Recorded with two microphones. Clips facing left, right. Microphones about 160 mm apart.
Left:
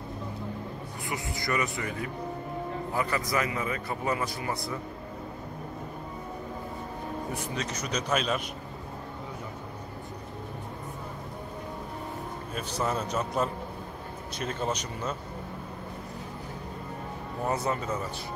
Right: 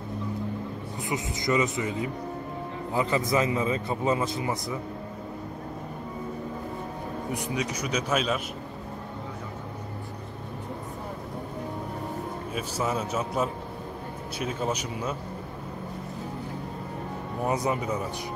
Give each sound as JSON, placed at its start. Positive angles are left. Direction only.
{"t": 1.0, "sound": "a man's voice", "side_deg": -20}
{"t": 7.3, "sound": "speech", "side_deg": -15}
{"t": 12.5, "sound": "speech", "side_deg": -5}
{"t": 17.5, "sound": "speech", "side_deg": -15}